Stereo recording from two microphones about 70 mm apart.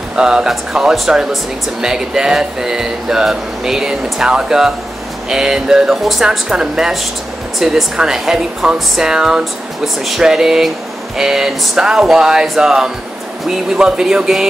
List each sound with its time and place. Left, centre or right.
0.1 s speech: centre
10.0 s a sound: centre
11.1 s speech: centre